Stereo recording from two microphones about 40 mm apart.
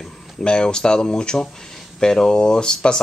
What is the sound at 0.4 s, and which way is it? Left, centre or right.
Speech, left.